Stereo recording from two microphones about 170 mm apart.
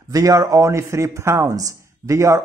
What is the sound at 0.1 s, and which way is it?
Speech, 20° right (ahead or behind).